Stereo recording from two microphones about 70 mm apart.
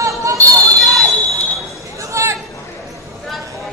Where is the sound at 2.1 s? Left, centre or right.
Right.